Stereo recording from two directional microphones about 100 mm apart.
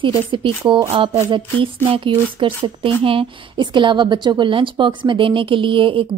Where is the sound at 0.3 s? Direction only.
55° right (ahead or behind).